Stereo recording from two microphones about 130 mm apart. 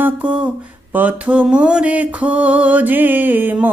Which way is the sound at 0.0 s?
10° right (ahead or behind).